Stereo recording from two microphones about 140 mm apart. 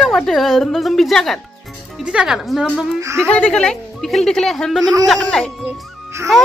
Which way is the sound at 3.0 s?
20° right (ahead or behind).